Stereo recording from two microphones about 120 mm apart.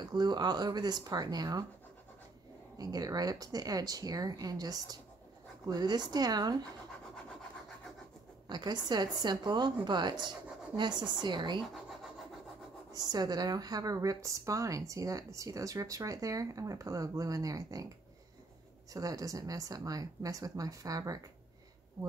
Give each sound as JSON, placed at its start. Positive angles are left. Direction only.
{"t": 0.0, "sound": "speech", "side_deg": -35}
{"t": 2.8, "sound": "speech", "side_deg": -30}
{"t": 8.5, "sound": "speech", "side_deg": -35}
{"t": 11.7, "sound": "vehicle", "side_deg": 0}
{"t": 12.9, "sound": "a woman's voice", "side_deg": -35}
{"t": 18.9, "sound": "a woman's voice", "side_deg": -30}